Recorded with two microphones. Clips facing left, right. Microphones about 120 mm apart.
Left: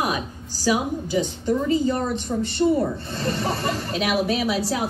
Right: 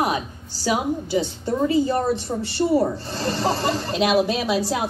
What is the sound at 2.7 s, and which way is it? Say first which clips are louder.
Speech: right 2 dB; 30° right (ahead or behind).